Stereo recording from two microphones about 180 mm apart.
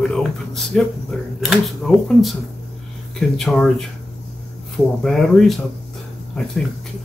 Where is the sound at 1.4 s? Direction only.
5° right (ahead or behind).